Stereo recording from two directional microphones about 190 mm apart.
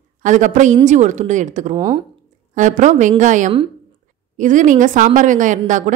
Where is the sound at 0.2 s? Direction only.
40° right (ahead or behind).